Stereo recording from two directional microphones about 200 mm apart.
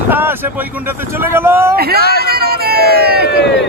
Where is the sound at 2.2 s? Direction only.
50° right (ahead or behind).